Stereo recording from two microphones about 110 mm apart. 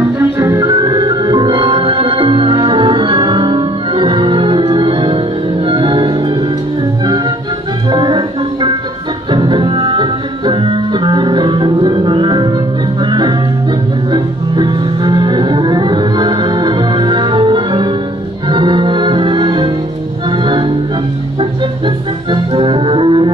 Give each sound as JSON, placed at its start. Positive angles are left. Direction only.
{"t": 0.4, "sound": "music", "side_deg": -40}
{"t": 7.9, "sound": "music", "side_deg": -45}